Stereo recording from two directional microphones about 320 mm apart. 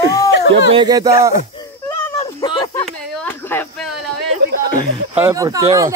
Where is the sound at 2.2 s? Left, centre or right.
Centre.